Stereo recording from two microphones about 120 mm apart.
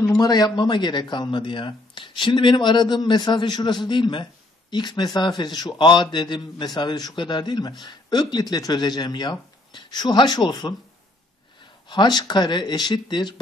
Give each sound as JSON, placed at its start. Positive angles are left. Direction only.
{"t": 0.2, "sound": "speech", "side_deg": 35}
{"t": 11.9, "sound": "speech", "side_deg": 35}